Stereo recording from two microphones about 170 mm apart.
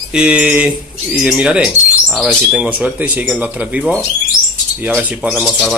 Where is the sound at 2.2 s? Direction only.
Centre (ahead or behind).